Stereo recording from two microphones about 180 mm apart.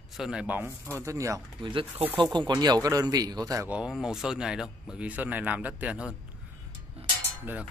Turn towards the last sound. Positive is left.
turn(degrees=-10)  # may be behind; listen again after turning